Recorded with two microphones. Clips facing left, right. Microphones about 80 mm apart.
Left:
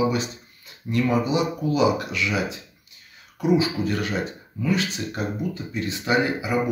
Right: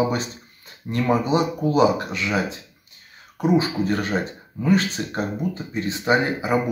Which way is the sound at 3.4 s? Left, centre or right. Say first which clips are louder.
Right 1 dB; right.